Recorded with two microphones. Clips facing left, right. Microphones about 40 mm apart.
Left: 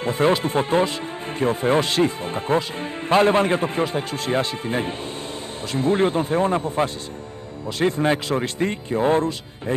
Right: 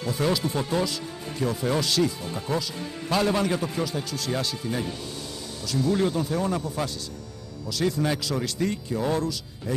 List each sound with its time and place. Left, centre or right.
0.0 s speech: left